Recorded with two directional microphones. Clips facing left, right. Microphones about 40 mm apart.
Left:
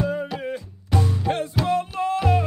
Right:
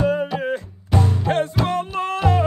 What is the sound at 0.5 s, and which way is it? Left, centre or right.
Music, right.